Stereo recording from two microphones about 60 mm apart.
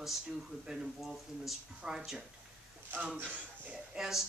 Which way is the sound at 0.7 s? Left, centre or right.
Centre.